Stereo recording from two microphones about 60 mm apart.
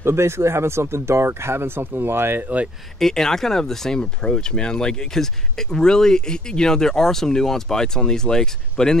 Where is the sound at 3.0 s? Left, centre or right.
Centre.